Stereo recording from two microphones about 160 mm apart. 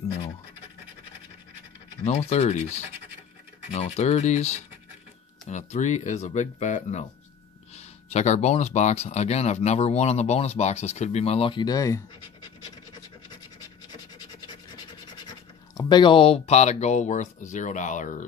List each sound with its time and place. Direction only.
2.0 s speech: 40° left (ahead or behind); by 12.0 s 20° left (ahead or behind)
15.2 s speech: 25° left (ahead or behind); by 18.2 s 50° left (ahead or behind)